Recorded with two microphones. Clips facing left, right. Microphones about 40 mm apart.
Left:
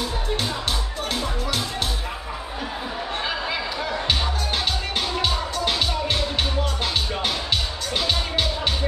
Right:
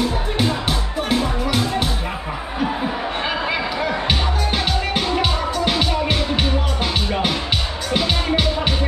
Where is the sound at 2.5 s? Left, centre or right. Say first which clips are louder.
Right 9 dB; right.